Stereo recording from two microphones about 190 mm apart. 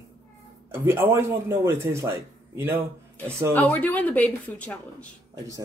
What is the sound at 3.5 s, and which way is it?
Speech, 10° left (ahead or behind).